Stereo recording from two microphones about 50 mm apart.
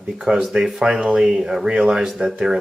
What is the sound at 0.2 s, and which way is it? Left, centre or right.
Speech, centre.